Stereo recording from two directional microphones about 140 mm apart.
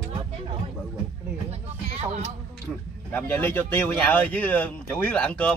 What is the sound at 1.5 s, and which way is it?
Speech, 50° right (ahead or behind).